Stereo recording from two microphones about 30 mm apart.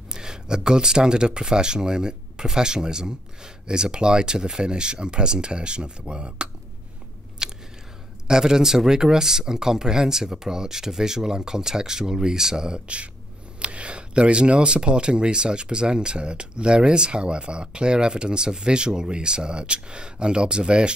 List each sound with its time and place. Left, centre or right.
0.1 s speech: right
7.4 s a sound: right
8.3 s speech: right
12.7 s speech: right